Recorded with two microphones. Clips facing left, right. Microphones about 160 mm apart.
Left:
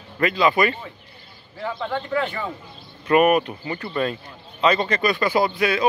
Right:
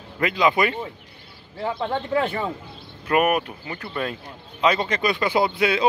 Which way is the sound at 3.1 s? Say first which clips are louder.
Left 4 dB; 5° right (ahead or behind).